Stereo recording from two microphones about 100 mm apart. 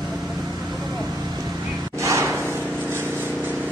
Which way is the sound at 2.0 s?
30° right (ahead or behind).